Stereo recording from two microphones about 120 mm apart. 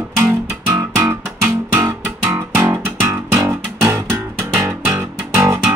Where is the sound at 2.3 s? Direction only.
20° right (ahead or behind).